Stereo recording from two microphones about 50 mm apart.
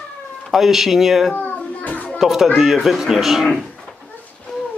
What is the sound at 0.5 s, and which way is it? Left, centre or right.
Speech, centre.